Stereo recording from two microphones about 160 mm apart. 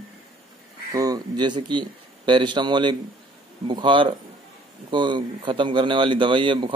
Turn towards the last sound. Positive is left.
turn(degrees=-30)  # may be behind; listen again after turning